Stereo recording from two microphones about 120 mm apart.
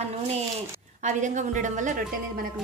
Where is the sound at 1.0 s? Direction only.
90° right.